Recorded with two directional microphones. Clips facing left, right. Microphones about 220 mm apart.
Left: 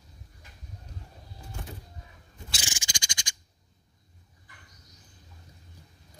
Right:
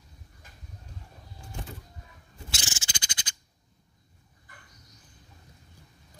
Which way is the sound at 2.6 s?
15° left (ahead or behind).